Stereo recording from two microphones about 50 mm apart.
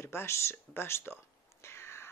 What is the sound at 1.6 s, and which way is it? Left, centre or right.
Cat, left.